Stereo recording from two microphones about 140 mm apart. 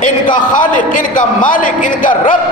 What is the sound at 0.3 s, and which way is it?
A man's voice, 70° left (ahead or behind).